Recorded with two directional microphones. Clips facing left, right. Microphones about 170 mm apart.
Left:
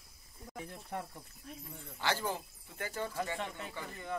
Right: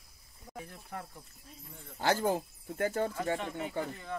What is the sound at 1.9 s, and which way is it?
Speech, 45° right (ahead or behind).